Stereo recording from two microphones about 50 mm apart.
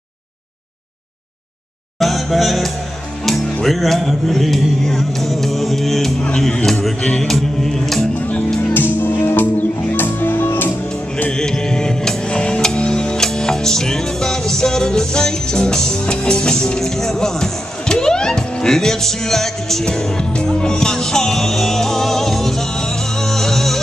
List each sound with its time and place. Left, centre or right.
2.0 s music: centre
7.0 s music: centre
7.2 s music: centre
8.7 s music: left
11.3 s music: centre
19.8 s music: centre